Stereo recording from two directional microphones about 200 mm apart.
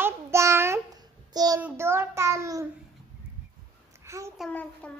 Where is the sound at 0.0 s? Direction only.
15° right (ahead or behind).